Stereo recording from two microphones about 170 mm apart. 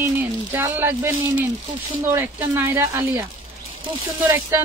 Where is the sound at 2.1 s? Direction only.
15° right (ahead or behind).